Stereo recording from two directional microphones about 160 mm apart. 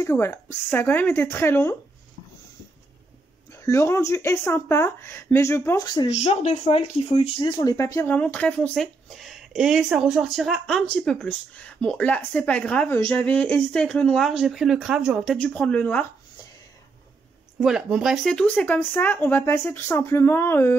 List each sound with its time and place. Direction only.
0.0 s speech: 15° left (ahead or behind)
3.5 s speech: 15° left (ahead or behind)
6.0 s speech: 45° left (ahead or behind); by 15.3 s 5° right (ahead or behind)
15.3 s speech: 10° left (ahead or behind)
17.6 s speech: 5° right (ahead or behind); by 20.7 s 15° left (ahead or behind)